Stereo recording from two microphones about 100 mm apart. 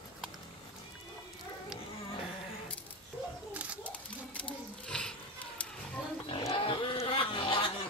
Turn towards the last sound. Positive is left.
turn(degrees=65)  # may be behind; listen again after turning